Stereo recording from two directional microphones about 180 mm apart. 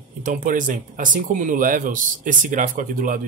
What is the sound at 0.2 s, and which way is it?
Speech, 50° right (ahead or behind).